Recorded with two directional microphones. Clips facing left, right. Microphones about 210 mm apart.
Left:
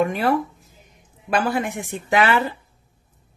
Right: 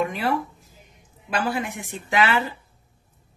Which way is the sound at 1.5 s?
50° left (ahead or behind).